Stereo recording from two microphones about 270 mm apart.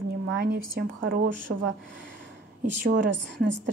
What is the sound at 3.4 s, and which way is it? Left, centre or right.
Speech, right.